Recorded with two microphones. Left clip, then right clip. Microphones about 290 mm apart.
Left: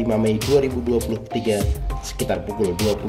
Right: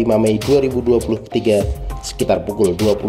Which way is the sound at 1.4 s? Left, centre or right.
Centre.